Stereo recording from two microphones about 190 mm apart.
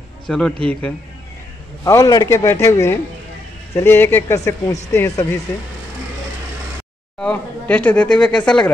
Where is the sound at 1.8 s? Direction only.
20° left (ahead or behind).